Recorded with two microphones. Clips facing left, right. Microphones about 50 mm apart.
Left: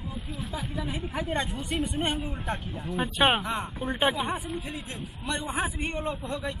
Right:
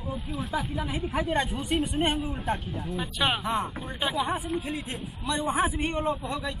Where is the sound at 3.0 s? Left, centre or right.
Left.